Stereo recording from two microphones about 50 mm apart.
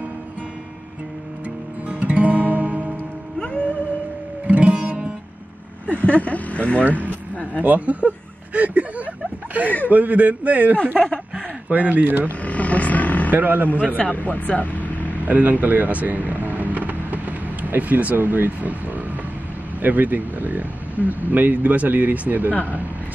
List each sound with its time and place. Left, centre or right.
1.9 s music: right
3.3 s music: left
4.5 s music: right
5.9 s vehicle: left
6.9 s a sound: left
7.6 s speech: right
12.3 s vehicle: left
13.3 s speech: right
13.9 s speech: left
15.2 s vehicle: right
17.6 s speech: right
19.8 s speech: right